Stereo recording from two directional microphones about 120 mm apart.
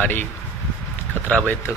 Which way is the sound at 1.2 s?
10° left (ahead or behind).